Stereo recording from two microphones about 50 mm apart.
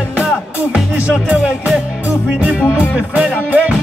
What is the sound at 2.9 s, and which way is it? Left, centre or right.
Speech, right.